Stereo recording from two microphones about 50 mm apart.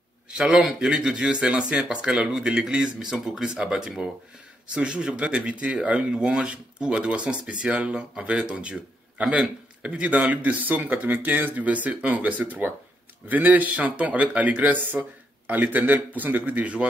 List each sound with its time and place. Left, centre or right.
0.3 s speech: centre
9.8 s speech: right